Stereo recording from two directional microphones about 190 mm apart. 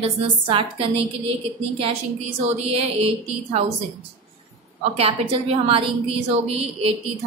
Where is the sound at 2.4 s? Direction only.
35° right (ahead or behind).